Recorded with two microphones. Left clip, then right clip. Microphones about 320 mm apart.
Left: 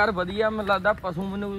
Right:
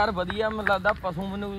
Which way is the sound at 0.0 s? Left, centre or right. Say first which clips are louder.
Left 2 dB; right.